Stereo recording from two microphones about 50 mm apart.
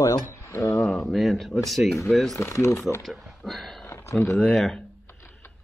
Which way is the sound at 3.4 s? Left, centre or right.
Centre.